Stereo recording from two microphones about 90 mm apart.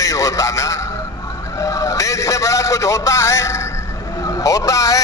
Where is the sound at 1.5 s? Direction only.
35° left (ahead or behind).